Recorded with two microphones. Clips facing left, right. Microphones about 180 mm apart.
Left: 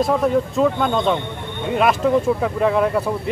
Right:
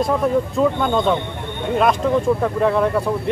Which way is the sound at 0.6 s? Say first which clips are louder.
Even; centre (ahead or behind).